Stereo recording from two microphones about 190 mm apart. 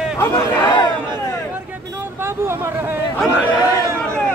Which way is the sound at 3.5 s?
20° left (ahead or behind).